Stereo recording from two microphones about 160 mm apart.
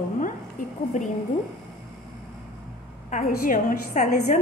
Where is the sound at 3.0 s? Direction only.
55° left (ahead or behind).